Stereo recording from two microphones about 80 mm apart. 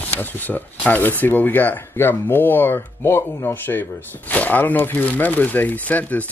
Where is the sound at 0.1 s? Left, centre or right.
Left.